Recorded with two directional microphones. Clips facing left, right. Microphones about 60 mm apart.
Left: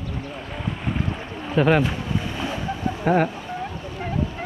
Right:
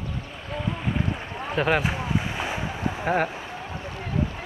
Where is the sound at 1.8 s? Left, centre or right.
Centre.